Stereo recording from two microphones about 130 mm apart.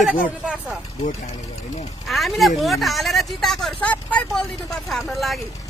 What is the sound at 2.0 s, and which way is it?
Speech, centre (ahead or behind).